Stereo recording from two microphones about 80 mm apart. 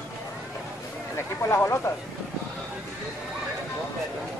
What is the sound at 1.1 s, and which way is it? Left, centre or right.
Speech, left.